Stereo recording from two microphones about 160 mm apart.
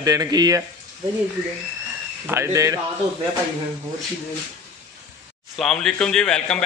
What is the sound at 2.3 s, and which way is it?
Speech, 15° right (ahead or behind).